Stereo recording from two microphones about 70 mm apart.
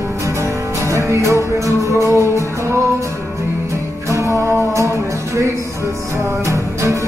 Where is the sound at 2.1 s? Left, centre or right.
Left.